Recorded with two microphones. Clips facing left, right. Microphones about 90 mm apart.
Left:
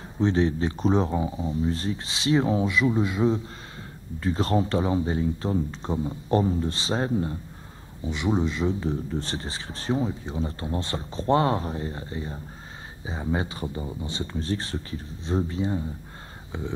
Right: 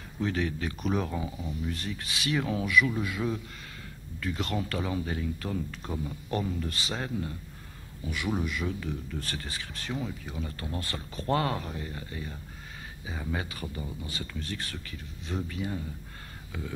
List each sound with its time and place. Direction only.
0.2 s a man's voice: 30° left (ahead or behind)